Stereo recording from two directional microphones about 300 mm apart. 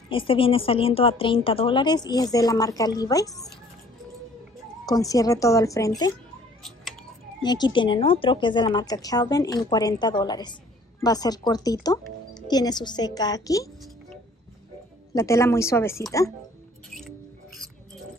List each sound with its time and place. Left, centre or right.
0.1 s a woman's voice: centre
4.8 s a woman's voice: centre
6.6 s a sound: centre
7.4 s a woman's voice: centre
15.1 s a woman's voice: centre